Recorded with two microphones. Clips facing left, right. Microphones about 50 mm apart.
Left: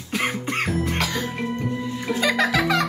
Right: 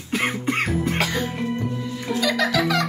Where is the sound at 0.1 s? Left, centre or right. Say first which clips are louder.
Right 2 dB; centre.